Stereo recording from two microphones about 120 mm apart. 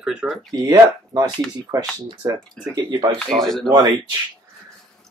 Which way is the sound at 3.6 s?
35° right (ahead or behind).